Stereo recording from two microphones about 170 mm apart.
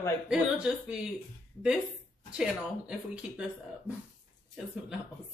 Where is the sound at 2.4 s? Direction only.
5° right (ahead or behind).